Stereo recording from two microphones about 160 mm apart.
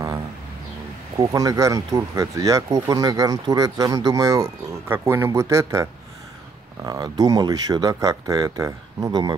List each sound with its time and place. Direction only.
1.1 s speech: 20° right (ahead or behind)